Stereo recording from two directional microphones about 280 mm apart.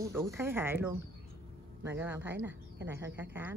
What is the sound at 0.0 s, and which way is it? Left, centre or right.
A woman's voice, centre.